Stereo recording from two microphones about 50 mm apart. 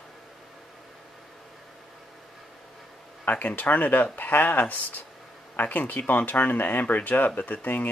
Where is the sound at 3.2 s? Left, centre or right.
Left.